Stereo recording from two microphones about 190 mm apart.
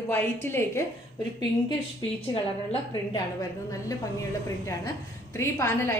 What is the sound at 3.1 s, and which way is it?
Speech, 20° left (ahead or behind).